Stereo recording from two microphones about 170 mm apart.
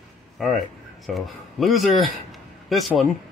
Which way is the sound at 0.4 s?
Centre (ahead or behind).